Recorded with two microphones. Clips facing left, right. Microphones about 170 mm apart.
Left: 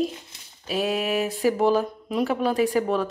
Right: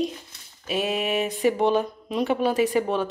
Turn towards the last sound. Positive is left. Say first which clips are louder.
# even
turn(degrees=0)  # may be behind; listen again after turning